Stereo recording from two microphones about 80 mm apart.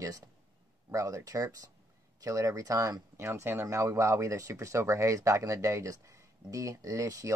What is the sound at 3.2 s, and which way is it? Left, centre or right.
Speech, right.